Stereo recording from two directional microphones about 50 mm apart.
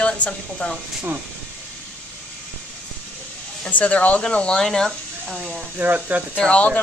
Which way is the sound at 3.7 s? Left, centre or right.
Left.